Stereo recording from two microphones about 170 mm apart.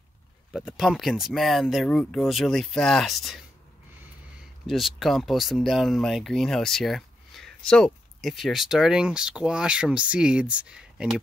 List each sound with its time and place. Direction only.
0.5 s speech: 5° right (ahead or behind)
4.6 s speech: centre (ahead or behind)